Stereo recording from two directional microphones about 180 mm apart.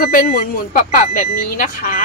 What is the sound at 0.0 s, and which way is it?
Speech, 55° left (ahead or behind).